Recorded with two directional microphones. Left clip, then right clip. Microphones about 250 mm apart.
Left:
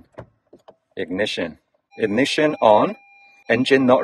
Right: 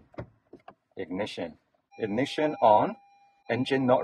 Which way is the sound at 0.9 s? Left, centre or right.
Left.